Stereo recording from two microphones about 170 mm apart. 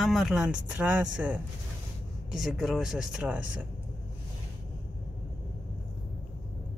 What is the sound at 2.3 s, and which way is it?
Speech, centre (ahead or behind).